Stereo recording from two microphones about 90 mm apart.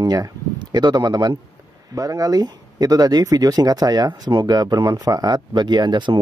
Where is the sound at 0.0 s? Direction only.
45° right (ahead or behind).